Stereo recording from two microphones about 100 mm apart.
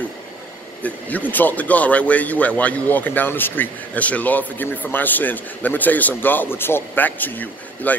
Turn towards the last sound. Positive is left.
turn(degrees=20)  # may be behind; listen again after turning